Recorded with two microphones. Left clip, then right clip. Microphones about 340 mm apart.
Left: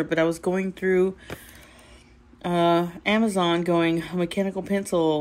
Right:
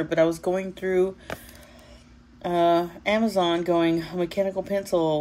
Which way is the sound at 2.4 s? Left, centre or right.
Left.